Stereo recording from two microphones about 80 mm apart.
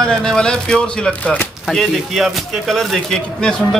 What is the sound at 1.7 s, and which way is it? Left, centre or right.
Speech, centre.